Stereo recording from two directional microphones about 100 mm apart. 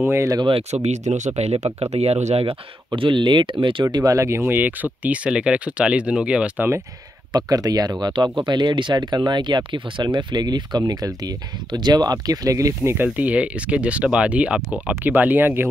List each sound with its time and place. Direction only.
0.0 s speech: 25° right (ahead or behind)
0.5 s speech: 80° right
0.8 s speech: 90° right
2.9 s speech: 55° right (ahead or behind)
3.8 s speech: 35° right (ahead or behind); by 6.7 s 10° right (ahead or behind)
7.3 s speech: 40° right (ahead or behind)
12.9 s speech: 15° right (ahead or behind)